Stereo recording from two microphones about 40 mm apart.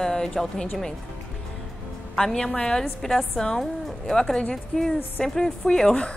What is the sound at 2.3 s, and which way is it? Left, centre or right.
Speech, centre.